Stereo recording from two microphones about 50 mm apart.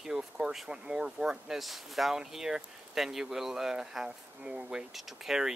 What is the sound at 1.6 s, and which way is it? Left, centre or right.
Speech, centre.